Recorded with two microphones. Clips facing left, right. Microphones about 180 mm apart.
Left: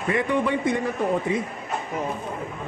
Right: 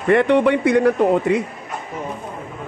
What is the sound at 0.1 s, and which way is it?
A man's voice, 75° right (ahead or behind).